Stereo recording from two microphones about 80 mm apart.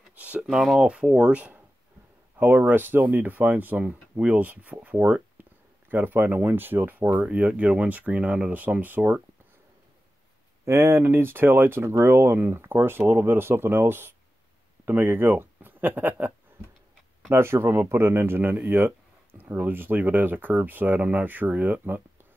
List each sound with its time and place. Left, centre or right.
0.1 s speech: centre
10.6 s speech: right